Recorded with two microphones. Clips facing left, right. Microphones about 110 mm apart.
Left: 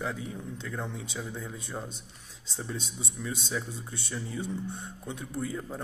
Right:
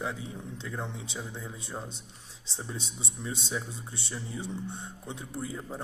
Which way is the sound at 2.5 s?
20° right (ahead or behind).